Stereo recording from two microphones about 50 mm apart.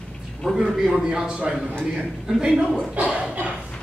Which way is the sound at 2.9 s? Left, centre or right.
Right.